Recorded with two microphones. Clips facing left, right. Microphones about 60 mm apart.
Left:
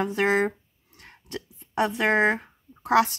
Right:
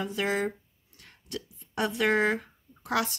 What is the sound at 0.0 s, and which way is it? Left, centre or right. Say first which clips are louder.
Speech: left 6 dB; left.